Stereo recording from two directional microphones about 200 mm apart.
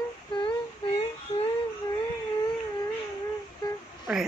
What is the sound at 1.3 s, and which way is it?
Music, 30° left (ahead or behind).